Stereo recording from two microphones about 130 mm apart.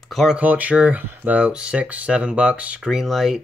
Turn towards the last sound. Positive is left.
turn(degrees=0)  # may be behind; listen again after turning